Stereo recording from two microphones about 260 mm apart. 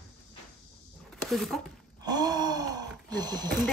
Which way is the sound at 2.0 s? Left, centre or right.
Centre.